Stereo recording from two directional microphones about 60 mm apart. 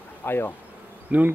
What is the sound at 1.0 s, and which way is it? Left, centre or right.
Bee, right.